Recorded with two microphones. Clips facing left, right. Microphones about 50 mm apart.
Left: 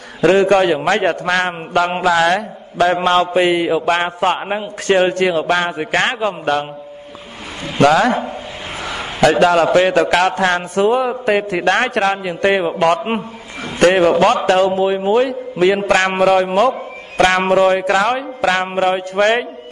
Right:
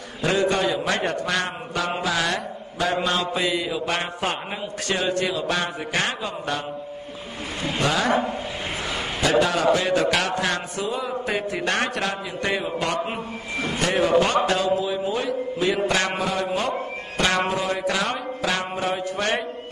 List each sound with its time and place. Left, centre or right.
0.2 s a man's voice: left
2.1 s mantra: left
7.8 s a man's voice: left
9.4 s mantra: left
13.7 s a man's voice: left
15.9 s speech: left
16.2 s a man's voice: left
17.2 s speech: left
17.6 s a man's voice: left